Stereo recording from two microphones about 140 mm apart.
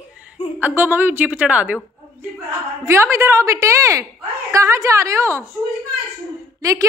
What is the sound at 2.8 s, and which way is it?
A woman's voice, 20° right (ahead or behind).